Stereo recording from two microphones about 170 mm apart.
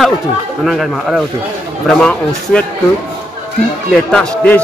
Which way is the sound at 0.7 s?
Centre (ahead or behind).